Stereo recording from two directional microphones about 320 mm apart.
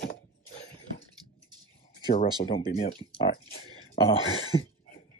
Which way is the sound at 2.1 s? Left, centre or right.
Centre.